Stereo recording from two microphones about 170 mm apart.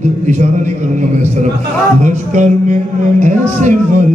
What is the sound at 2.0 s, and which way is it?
A man's voice, 45° right (ahead or behind).